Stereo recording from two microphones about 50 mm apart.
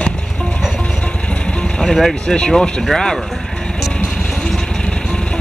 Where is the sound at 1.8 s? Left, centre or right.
Centre.